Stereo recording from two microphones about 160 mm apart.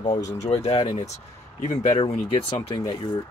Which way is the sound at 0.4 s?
40° left (ahead or behind).